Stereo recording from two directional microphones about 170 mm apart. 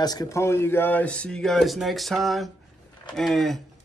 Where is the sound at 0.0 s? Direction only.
25° left (ahead or behind).